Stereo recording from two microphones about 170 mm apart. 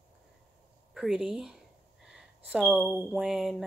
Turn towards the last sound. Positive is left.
turn(degrees=0)  # may be behind; listen again after turning